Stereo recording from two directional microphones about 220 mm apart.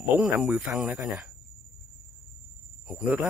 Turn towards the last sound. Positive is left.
turn(degrees=-5)  # may be behind; listen again after turning